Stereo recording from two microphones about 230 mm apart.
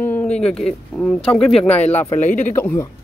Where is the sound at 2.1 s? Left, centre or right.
Left.